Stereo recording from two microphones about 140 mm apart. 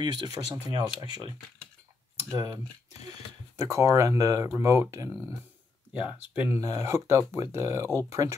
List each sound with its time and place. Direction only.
0.0 s speech: 30° right (ahead or behind)
2.3 s speech: 25° right (ahead or behind)
5.9 s speech: 10° right (ahead or behind)
6.6 s speech: 25° right (ahead or behind)